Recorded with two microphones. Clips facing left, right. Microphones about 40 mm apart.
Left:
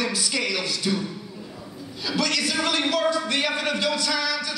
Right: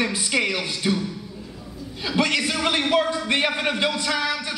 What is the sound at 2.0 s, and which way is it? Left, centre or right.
A man's voice, right.